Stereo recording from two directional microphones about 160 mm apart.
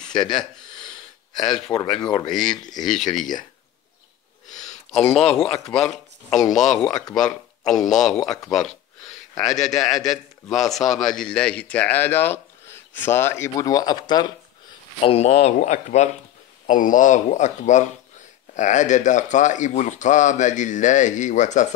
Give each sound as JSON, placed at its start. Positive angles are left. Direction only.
{"t": 0.1, "sound": "speech", "side_deg": 25}
{"t": 0.8, "sound": "a sound", "side_deg": 25}
{"t": 1.7, "sound": "speech", "side_deg": 20}
{"t": 2.8, "sound": "a man's voice", "side_deg": 0}
{"t": 4.5, "sound": "a sound", "side_deg": 45}
{"t": 5.0, "sound": "a man's voice", "side_deg": 5}
{"t": 15.0, "sound": "speech", "side_deg": 40}